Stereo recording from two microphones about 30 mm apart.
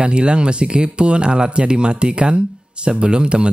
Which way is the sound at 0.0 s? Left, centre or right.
Right.